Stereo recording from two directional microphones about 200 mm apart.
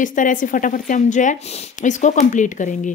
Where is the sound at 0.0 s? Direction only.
40° left (ahead or behind).